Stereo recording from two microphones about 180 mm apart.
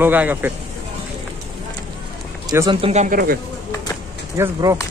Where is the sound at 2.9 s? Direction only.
45° right (ahead or behind).